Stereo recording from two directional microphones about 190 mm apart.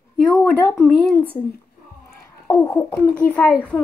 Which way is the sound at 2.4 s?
15° left (ahead or behind).